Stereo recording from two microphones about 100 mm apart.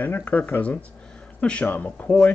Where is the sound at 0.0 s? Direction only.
15° left (ahead or behind).